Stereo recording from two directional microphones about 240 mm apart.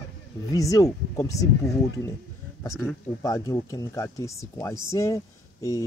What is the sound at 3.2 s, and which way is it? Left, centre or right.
Speech, centre.